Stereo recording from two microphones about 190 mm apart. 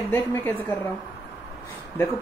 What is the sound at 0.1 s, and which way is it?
Speech, 10° left (ahead or behind).